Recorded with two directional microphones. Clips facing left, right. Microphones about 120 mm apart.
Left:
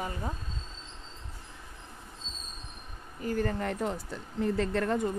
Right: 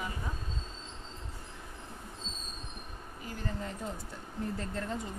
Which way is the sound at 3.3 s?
55° left (ahead or behind).